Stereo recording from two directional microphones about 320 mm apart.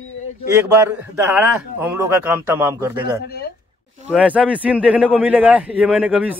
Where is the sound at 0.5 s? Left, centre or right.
Centre.